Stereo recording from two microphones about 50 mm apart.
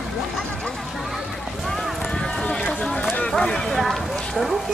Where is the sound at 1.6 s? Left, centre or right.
Centre.